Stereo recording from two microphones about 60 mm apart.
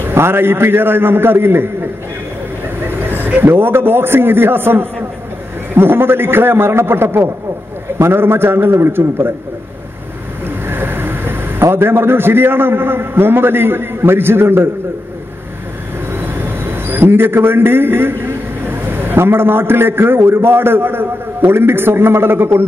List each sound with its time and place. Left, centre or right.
0.1 s a man's voice: right
3.1 s a man's voice: right
10.4 s vehicle: right
11.6 s a man's voice: right
16.2 s a man's voice: right